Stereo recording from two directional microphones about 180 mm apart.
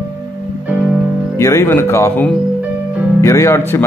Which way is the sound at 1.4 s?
15° left (ahead or behind).